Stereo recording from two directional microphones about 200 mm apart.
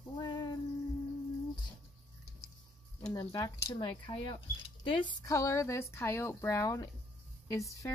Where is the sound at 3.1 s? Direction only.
20° left (ahead or behind).